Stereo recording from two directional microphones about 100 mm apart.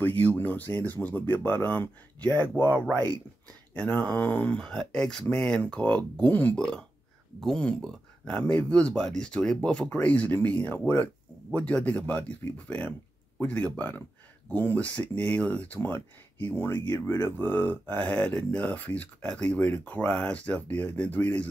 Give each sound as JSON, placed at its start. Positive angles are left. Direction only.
{"t": 0.0, "sound": "speech", "side_deg": 15}
{"t": 7.3, "sound": "speech", "side_deg": 5}